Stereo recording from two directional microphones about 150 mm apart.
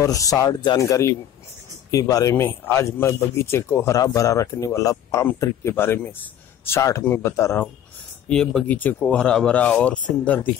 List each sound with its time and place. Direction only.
0.0 s speech: 25° left (ahead or behind)
8.3 s speech: 5° left (ahead or behind)